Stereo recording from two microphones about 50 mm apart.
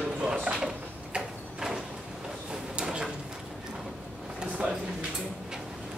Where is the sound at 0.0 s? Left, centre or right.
Centre.